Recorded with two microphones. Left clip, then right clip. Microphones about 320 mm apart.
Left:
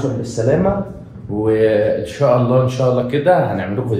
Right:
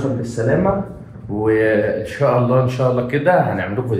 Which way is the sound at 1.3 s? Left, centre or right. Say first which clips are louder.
Left 1 dB; centre.